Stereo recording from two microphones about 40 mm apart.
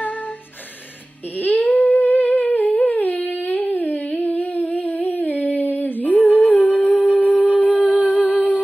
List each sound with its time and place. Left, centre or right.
1.4 s humming: left